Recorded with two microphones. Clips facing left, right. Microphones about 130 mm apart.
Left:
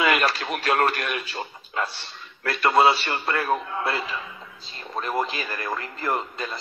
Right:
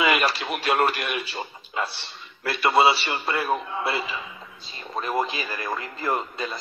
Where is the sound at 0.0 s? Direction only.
10° right (ahead or behind).